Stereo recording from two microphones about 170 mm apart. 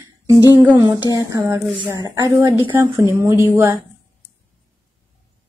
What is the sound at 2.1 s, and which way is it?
A woman's voice, 20° right (ahead or behind).